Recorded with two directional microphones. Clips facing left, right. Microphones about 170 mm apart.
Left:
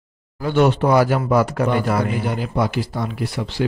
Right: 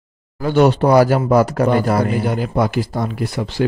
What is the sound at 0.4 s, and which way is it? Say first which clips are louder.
Speech: right 3 dB; 40° right (ahead or behind).